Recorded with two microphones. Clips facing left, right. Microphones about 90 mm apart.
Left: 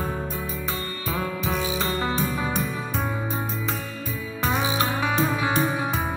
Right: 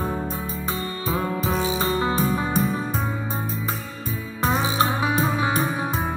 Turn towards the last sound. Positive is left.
turn(degrees=-30)  # may be behind; listen again after turning